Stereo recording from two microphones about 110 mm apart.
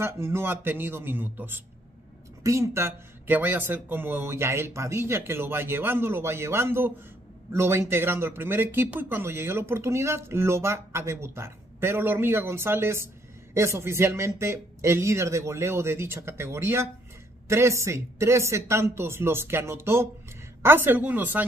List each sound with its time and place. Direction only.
0.0 s a woman's voice: 25° right (ahead or behind)